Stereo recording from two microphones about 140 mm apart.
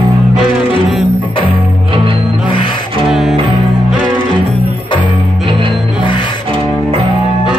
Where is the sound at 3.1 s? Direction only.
5° right (ahead or behind).